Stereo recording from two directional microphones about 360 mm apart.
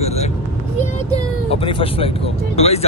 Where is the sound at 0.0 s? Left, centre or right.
Centre.